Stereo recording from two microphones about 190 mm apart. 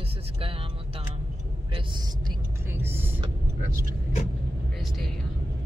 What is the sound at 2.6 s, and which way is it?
Speech, 10° right (ahead or behind).